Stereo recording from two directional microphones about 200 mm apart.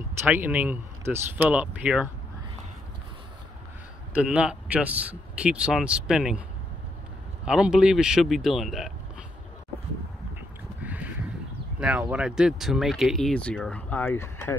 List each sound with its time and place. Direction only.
0.2 s speech: 10° right (ahead or behind)
4.1 s speech: 5° right (ahead or behind)
7.4 s speech: 5° right (ahead or behind)
10.8 s a sound: 5° right (ahead or behind)
12.1 s speech: 5° right (ahead or behind); by 14.6 s 15° left (ahead or behind)